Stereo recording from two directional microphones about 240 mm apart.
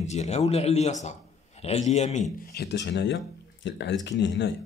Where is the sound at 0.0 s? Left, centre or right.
Left.